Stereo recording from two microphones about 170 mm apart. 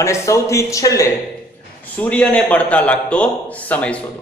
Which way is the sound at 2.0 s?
10° left (ahead or behind).